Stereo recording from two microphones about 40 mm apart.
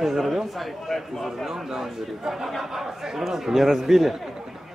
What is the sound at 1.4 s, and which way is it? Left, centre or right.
A man's voice, centre.